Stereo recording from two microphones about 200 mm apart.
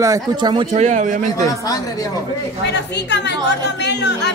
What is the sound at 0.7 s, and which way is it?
Speech, 35° right (ahead or behind).